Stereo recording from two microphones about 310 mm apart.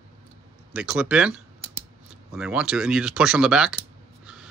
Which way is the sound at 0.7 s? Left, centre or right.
Centre.